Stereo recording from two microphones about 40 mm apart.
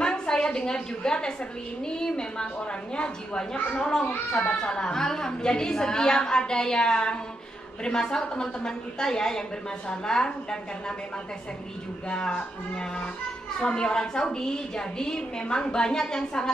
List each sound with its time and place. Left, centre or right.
0.0 s a woman's voice: left
3.7 s a woman's voice: left
12.1 s a woman's voice: left